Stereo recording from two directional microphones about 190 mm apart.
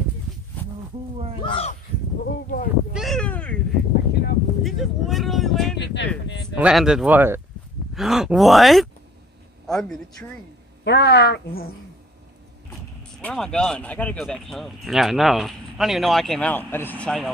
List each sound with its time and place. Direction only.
1.4 s speech: 25° left (ahead or behind)
2.2 s speech: 55° left (ahead or behind)
2.9 s cat: centre (ahead or behind)
4.1 s a sound: 55° left (ahead or behind)
4.6 s speech: centre (ahead or behind)
5.8 s speech: 65° left (ahead or behind)
6.5 s a man's voice: 5° right (ahead or behind)
10.8 s speech: 60° left (ahead or behind)
13.2 s speech: 5° left (ahead or behind)